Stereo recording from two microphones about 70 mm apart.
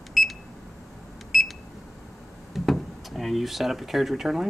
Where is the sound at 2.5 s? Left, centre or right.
Centre.